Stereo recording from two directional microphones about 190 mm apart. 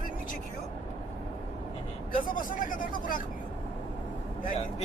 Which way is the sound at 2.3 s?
45° left (ahead or behind).